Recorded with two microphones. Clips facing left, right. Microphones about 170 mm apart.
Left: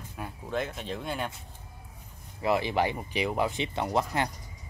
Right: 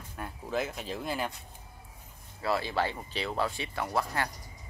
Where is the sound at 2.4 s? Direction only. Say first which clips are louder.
Left 4 dB; 20° left (ahead or behind).